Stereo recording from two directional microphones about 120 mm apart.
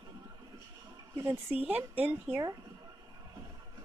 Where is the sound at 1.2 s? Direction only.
20° right (ahead or behind).